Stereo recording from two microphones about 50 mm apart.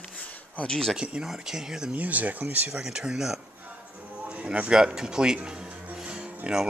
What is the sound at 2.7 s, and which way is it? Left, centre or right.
Speech, centre.